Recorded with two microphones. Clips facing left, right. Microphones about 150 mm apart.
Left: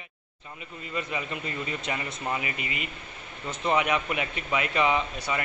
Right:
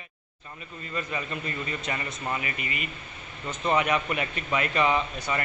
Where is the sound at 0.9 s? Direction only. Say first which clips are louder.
Even; 15° left (ahead or behind).